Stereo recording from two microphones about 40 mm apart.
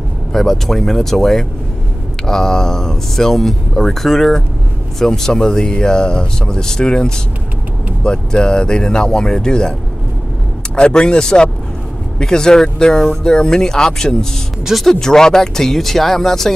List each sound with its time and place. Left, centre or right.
0.3 s speech: centre
10.8 s speech: left
13.0 s speech: centre